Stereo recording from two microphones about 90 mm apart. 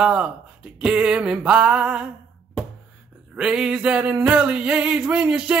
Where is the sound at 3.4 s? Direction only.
10° right (ahead or behind).